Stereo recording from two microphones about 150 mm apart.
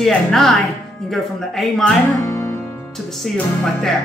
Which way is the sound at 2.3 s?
20° left (ahead or behind).